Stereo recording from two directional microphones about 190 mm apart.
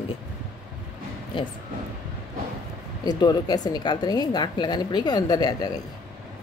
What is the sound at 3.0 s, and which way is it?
A woman's voice, 20° left (ahead or behind).